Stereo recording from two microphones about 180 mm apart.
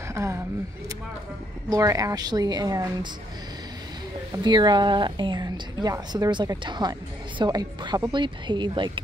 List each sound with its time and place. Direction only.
0.1 s speech: 15° right (ahead or behind)
1.7 s a woman's voice: 20° right (ahead or behind)
4.4 s a woman's voice: 25° right (ahead or behind)